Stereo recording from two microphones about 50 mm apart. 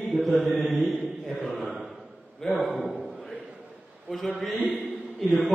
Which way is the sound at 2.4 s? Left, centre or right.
Centre.